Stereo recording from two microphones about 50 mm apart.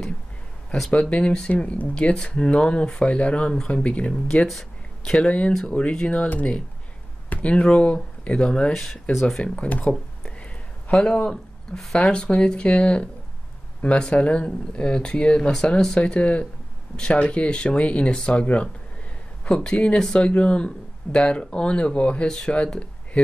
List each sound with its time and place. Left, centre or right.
1.1 s speech: centre
4.5 s a sound: centre
5.1 s speech: left
7.2 s speech: left
9.4 s a sound: left
11.8 s speech: centre
12.1 s speech: left